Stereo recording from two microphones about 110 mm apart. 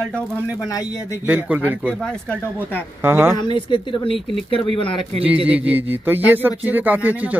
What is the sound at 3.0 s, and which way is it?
Speech, 20° right (ahead or behind).